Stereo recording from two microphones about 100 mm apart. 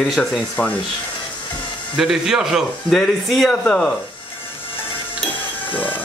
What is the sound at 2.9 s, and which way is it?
Speech, 5° left (ahead or behind).